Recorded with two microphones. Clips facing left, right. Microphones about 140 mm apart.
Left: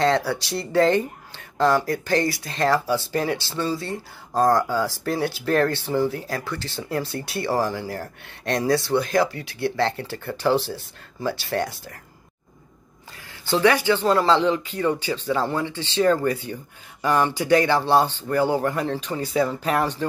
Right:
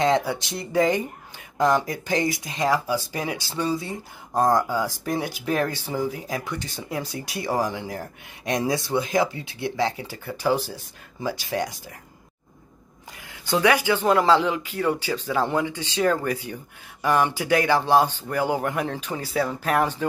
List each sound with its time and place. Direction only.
0.0 s speech: 20° right (ahead or behind)
7.7 s speech: centre (ahead or behind)
8.2 s speech: 15° right (ahead or behind)
9.8 s speech: 10° right (ahead or behind)
13.1 s speech: 15° right (ahead or behind)